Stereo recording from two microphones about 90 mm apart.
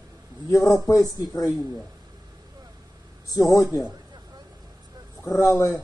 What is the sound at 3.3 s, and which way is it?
Speech, 40° left (ahead or behind).